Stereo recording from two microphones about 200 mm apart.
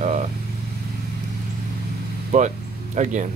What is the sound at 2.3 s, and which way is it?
Speech, 35° right (ahead or behind).